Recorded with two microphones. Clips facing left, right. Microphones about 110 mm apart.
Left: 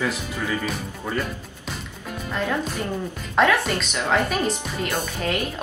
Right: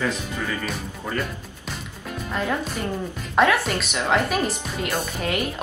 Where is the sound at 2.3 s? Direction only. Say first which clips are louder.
Left 1 dB; centre (ahead or behind).